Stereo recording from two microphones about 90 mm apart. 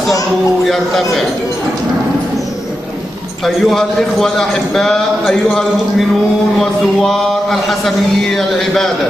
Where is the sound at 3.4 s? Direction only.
Centre (ahead or behind).